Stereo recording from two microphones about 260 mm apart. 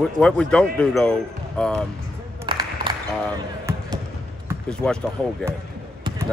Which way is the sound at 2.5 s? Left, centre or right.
Centre.